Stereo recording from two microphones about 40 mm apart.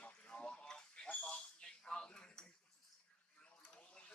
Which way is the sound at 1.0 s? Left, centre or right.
Left.